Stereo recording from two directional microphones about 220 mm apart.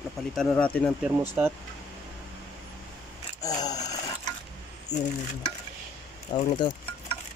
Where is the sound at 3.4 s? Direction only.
15° left (ahead or behind).